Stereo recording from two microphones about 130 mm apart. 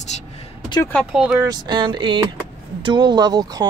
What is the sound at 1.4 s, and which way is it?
Speech, 30° right (ahead or behind).